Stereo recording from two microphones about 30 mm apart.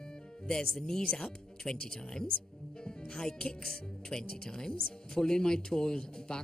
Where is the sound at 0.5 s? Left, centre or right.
Centre.